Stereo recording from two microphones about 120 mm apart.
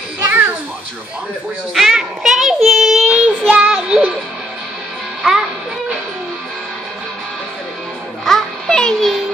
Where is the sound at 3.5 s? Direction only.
10° right (ahead or behind).